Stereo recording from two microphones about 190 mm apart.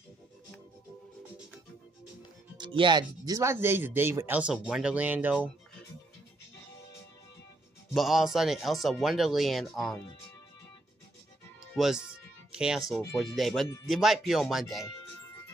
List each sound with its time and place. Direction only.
2.5 s speech: 25° right (ahead or behind); by 5.5 s 10° right (ahead or behind)
7.9 s speech: centre (ahead or behind)
11.7 s music: centre (ahead or behind)
13.1 s speech: centre (ahead or behind)